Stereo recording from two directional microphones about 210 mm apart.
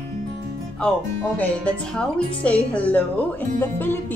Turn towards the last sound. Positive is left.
turn(degrees=10)  # may be behind; listen again after turning